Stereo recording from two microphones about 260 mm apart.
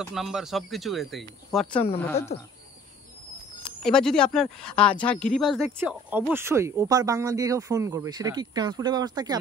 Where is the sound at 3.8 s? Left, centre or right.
Centre.